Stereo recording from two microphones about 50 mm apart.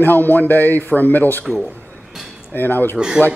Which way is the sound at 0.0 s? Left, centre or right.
Left.